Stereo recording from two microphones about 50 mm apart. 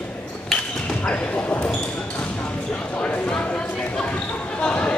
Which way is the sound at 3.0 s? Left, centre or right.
Left.